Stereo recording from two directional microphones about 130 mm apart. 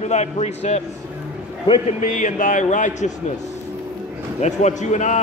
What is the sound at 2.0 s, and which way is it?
A man's voice, 75° left (ahead or behind).